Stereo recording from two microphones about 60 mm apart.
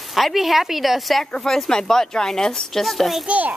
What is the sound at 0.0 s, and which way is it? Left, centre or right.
A woman's voice, centre.